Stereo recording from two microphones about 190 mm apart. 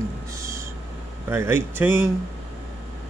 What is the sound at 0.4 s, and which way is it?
Train, 15° right (ahead or behind).